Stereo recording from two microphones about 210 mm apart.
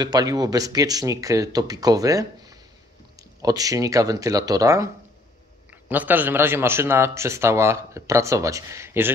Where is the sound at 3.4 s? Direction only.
15° right (ahead or behind).